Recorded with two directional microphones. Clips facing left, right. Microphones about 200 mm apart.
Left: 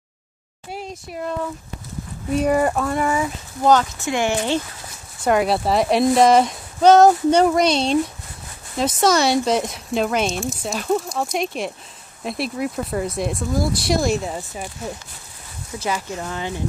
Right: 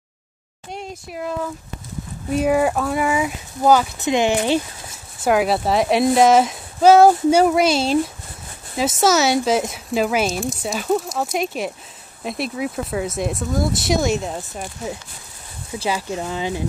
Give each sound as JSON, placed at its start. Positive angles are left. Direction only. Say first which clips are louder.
{"t": 0.7, "sound": "speech", "louder": "even", "side_deg": 0}
{"t": 4.0, "sound": "speech", "louder": "right 3 dB", "side_deg": -20}
{"t": 5.2, "sound": "speech", "louder": "right 1 dB", "side_deg": 0}
{"t": 9.0, "sound": "speech", "louder": "even", "side_deg": -5}
{"t": 15.9, "sound": "speech", "louder": "right 2 dB", "side_deg": -15}